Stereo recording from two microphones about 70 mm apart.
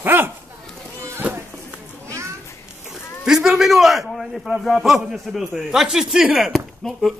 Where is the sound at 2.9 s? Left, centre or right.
Centre.